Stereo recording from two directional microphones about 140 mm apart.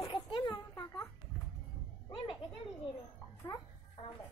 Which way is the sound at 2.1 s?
35° left (ahead or behind).